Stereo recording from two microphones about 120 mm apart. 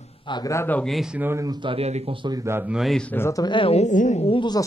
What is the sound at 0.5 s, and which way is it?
Speech, 25° left (ahead or behind).